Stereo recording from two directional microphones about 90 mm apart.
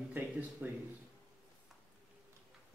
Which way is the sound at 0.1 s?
15° right (ahead or behind).